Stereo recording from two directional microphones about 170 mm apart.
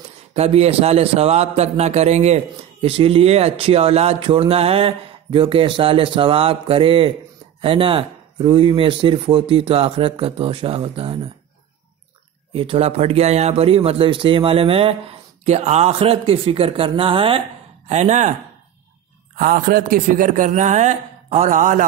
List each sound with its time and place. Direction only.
0.3 s a man's voice: 35° right (ahead or behind)
12.5 s a man's voice: 35° right (ahead or behind)
17.8 s speech: 45° right (ahead or behind)
19.3 s speech: 55° right (ahead or behind)